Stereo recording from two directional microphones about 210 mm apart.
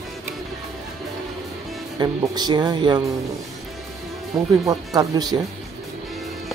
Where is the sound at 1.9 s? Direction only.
20° right (ahead or behind).